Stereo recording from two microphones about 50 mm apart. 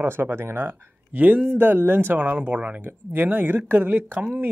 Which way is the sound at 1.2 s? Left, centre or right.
Right.